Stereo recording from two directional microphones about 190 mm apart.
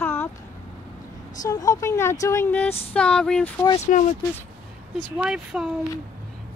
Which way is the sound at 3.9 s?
45° left (ahead or behind).